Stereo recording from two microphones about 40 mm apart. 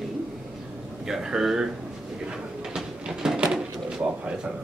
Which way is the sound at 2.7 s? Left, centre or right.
Centre.